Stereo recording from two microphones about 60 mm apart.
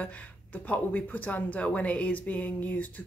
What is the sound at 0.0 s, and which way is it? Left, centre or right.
Speech, left.